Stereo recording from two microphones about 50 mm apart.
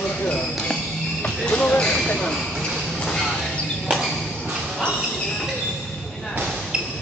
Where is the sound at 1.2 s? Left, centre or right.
Left.